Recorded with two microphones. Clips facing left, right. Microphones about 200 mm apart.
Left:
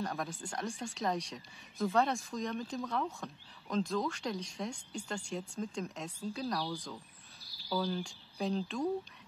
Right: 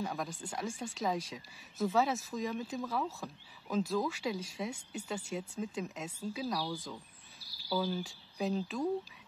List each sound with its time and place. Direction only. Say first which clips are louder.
0.0 s speech: even; centre (ahead or behind)